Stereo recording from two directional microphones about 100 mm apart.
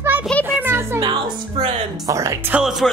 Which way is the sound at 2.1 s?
30° right (ahead or behind).